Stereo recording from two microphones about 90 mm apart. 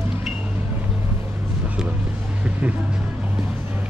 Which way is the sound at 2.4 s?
15° right (ahead or behind).